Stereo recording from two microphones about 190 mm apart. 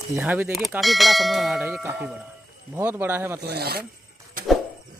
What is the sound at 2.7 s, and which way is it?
Speech, 10° right (ahead or behind).